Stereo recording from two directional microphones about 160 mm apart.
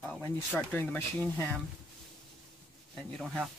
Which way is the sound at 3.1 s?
Centre (ahead or behind).